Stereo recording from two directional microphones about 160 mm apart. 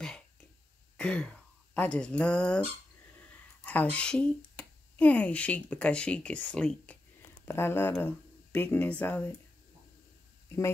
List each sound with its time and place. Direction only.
0.9 s speech: 5° left (ahead or behind)
3.9 s speech: 5° left (ahead or behind)